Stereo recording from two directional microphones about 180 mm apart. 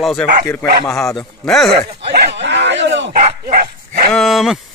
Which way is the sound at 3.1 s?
50° right (ahead or behind).